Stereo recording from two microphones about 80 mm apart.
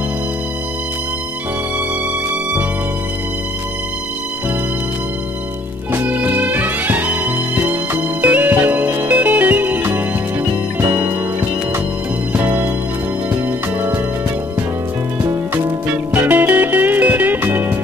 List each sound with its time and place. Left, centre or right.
5.9 s music: right
12.3 s music: right
15.5 s music: right